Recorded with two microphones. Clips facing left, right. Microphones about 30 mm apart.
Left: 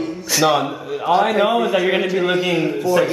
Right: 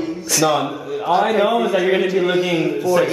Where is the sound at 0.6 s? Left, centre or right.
Centre.